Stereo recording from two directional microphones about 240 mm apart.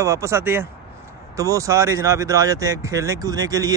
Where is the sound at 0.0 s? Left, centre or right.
Centre.